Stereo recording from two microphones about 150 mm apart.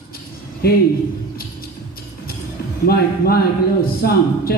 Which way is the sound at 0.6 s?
90° left.